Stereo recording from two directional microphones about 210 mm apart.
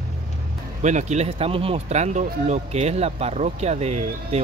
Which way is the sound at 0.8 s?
35° right (ahead or behind).